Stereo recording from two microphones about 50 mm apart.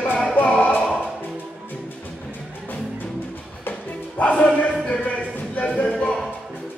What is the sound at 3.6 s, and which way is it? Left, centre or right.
Music, left.